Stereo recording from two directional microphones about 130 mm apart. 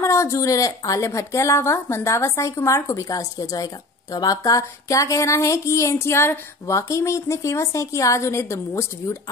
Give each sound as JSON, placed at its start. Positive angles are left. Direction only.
{"t": 0.0, "sound": "speech", "side_deg": 25}